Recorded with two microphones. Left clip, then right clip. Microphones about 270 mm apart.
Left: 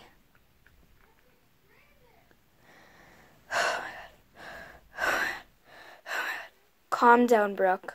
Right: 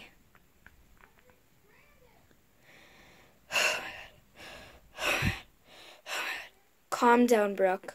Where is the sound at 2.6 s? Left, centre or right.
Centre.